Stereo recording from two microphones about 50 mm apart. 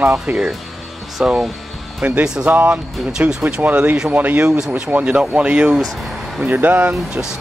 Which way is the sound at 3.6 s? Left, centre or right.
Right.